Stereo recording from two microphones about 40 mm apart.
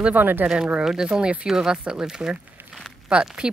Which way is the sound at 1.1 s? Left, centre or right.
Right.